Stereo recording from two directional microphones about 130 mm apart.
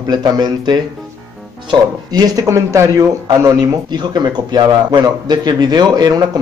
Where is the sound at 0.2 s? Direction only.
30° right (ahead or behind).